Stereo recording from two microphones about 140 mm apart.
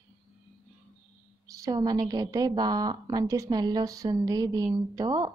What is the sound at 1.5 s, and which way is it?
A woman's voice, 25° right (ahead or behind).